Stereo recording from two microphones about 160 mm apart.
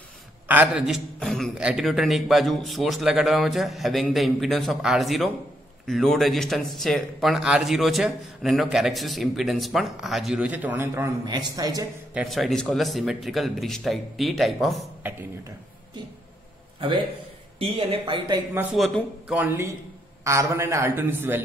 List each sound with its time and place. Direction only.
0.5 s speech: 10° right (ahead or behind)
11.2 s speech: 25° right (ahead or behind)
12.1 s speech: 5° right (ahead or behind)
17.6 s speech: 35° right (ahead or behind)
19.2 s a man's voice: 10° right (ahead or behind)